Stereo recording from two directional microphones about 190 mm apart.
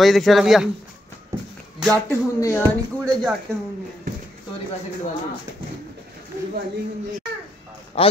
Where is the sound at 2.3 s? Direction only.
15° left (ahead or behind).